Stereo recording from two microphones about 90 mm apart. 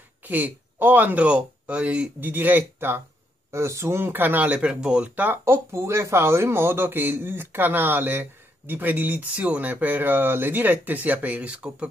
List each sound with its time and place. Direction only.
0.2 s speech: 20° right (ahead or behind)